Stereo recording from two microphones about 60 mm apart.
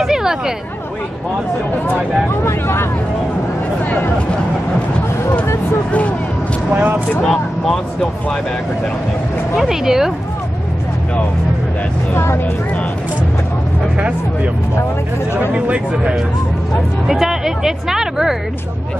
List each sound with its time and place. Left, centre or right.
0.0 s hubbub: centre
2.4 s speech: left
5.9 s speech: left
6.7 s speech: right
7.2 s speech: centre
9.6 s speech: centre
12.1 s speech: left
13.9 s speech: right
15.5 s speech: centre
17.1 s speech: centre